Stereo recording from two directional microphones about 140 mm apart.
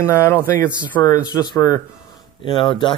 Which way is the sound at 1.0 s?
30° left (ahead or behind).